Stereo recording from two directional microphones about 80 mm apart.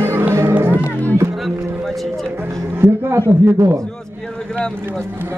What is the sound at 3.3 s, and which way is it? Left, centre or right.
Speech, centre.